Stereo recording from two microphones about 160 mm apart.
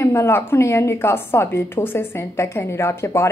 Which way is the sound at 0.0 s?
15° left (ahead or behind).